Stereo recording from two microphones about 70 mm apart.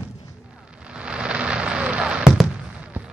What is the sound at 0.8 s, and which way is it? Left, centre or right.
Fireworks, centre.